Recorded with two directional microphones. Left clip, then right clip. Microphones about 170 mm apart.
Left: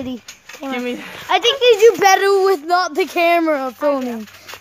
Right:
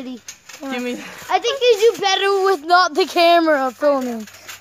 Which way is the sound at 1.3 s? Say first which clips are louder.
Left 3 dB; 20° left (ahead or behind).